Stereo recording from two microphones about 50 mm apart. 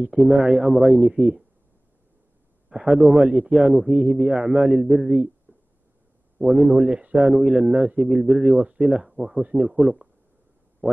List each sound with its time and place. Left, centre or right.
0.0 s speech: centre
2.8 s a man's voice: centre
3.2 s a man's voice: centre
3.5 s speech: centre
3.9 s a man's voice: right
4.3 s speech: centre
5.5 s a sound: right
6.4 s speech: centre
6.9 s speech: right
8.1 s speech: centre
9.4 s a man's voice: right
9.7 s speech: centre